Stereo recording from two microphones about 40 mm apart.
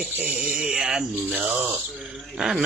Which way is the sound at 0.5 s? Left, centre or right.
Right.